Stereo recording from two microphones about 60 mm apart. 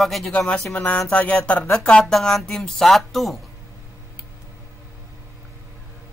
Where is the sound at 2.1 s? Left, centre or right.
Centre.